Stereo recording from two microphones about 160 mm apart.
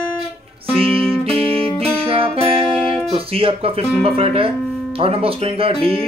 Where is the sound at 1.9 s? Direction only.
35° right (ahead or behind).